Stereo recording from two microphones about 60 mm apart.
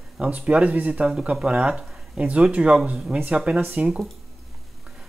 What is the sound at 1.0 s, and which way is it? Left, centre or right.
Speech, centre.